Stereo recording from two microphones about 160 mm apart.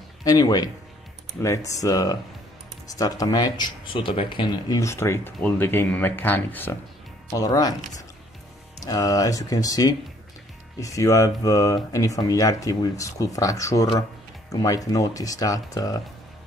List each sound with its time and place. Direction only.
0.2 s speech: 25° left (ahead or behind)
8.8 s speech: 20° left (ahead or behind)